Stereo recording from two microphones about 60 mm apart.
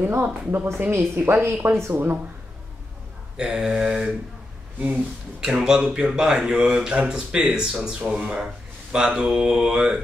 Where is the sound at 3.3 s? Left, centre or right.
Centre.